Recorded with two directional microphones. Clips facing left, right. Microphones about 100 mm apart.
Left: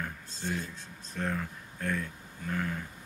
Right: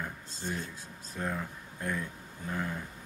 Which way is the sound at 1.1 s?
15° right (ahead or behind).